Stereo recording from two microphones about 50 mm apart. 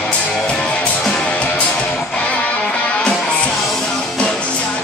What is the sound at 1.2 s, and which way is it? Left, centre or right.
Music, left.